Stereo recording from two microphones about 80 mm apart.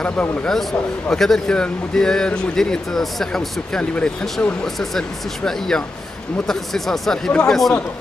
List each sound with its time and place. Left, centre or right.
0.0 s speech: centre
0.5 s speech: centre